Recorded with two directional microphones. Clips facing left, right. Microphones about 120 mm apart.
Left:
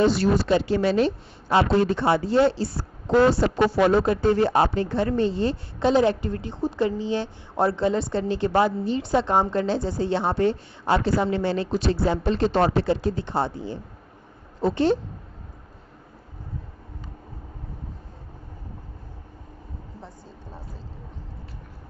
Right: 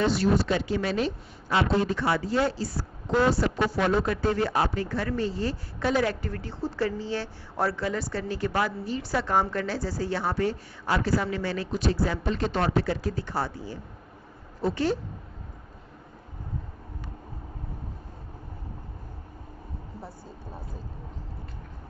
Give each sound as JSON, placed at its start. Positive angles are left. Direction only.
{"t": 0.1, "sound": "speech", "side_deg": 85}
{"t": 0.7, "sound": "a woman's voice", "side_deg": 30}
{"t": 3.9, "sound": "a woman's voice", "side_deg": 25}